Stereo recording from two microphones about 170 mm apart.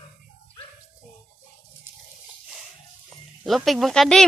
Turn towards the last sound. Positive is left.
turn(degrees=0)  # may be behind; listen again after turning